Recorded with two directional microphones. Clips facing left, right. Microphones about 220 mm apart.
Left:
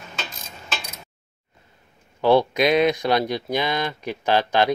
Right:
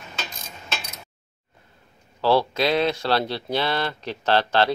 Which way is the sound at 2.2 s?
15° left (ahead or behind).